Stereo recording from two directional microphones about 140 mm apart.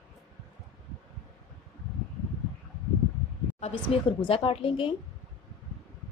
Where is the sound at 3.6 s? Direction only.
40° left (ahead or behind).